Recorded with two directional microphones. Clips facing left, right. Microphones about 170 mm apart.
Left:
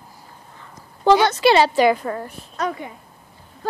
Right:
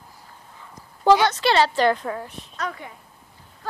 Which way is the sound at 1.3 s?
10° left (ahead or behind).